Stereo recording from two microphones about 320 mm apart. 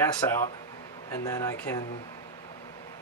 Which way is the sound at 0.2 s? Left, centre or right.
Centre.